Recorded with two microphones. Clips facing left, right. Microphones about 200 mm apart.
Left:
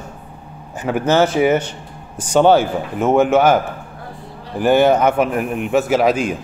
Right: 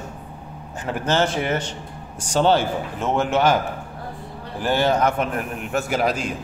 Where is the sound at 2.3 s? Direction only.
55° left (ahead or behind).